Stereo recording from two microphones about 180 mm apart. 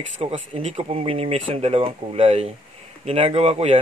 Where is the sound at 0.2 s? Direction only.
40° right (ahead or behind).